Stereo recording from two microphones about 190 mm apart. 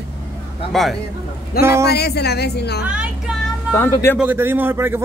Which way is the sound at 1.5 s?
50° left (ahead or behind).